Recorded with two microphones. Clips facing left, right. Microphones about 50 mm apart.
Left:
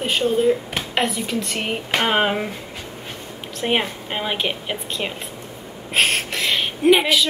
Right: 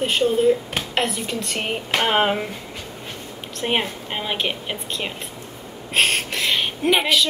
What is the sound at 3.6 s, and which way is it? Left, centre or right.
A woman's voice, centre.